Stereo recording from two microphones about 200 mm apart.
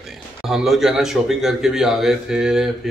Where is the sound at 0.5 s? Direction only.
Centre (ahead or behind).